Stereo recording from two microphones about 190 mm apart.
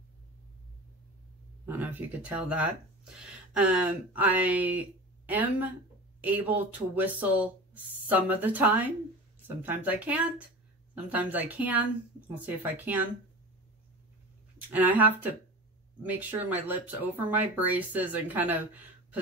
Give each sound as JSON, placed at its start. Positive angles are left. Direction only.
{"t": 1.7, "sound": "speech", "side_deg": -10}
{"t": 14.7, "sound": "speech", "side_deg": -10}